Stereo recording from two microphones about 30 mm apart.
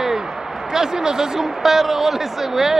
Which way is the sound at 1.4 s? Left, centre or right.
Centre.